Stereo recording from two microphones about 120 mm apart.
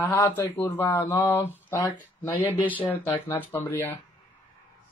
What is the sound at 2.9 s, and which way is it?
A man's voice, 20° left (ahead or behind).